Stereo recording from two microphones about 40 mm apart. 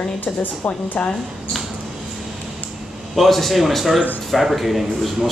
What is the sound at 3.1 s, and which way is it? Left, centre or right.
A man's voice, centre.